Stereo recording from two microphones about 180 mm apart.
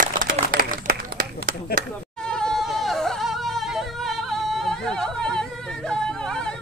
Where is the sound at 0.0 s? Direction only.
50° right (ahead or behind).